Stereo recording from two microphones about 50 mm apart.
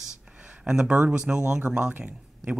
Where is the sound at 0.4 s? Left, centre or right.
Right.